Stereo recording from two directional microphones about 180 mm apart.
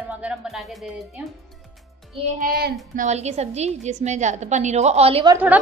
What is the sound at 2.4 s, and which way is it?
Child singing, 55° right (ahead or behind).